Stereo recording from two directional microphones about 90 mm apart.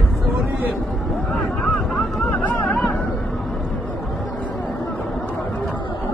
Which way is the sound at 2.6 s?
5° left (ahead or behind).